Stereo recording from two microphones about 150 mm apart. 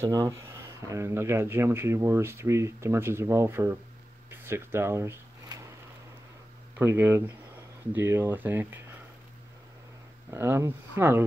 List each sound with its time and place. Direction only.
0.0 s speech: 20° right (ahead or behind)
4.3 s a sound: 15° right (ahead or behind)
6.7 s speech: 15° right (ahead or behind)
10.3 s speech: 15° right (ahead or behind)